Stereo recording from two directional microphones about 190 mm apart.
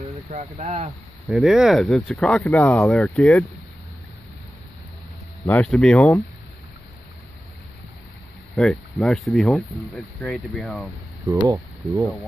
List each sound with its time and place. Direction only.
0.3 s speech: 35° right (ahead or behind)
1.3 s speech: 5° right (ahead or behind)
5.5 s speech: 5° left (ahead or behind)
8.5 s speech: 5° left (ahead or behind)
11.4 s speech: 15° right (ahead or behind)